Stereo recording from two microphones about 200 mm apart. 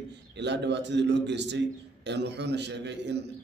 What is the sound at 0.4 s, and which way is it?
A man's voice, 60° right (ahead or behind).